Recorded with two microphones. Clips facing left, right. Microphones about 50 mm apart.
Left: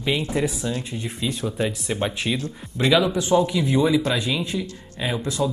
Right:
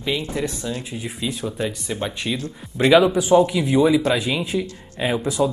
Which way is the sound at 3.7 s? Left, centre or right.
Centre.